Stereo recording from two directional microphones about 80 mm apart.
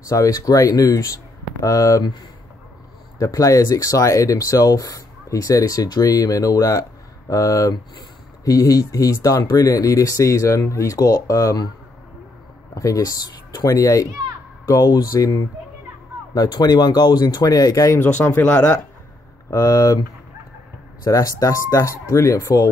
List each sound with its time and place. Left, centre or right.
0.0 s speech: left
3.2 s speech: left
12.7 s speech: left
16.5 s speech: left
18.2 s speech: left
19.5 s speech: left
21.0 s speech: left